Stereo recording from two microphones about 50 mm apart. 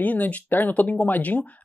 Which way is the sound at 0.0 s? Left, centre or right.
Left.